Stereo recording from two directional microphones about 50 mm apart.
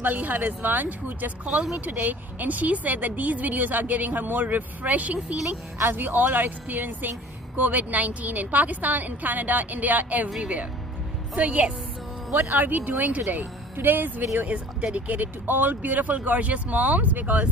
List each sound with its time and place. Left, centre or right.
0.0 s speech: right
5.9 s speech: right
12.4 s speech: right
14.4 s speech: right
15.0 s speech: right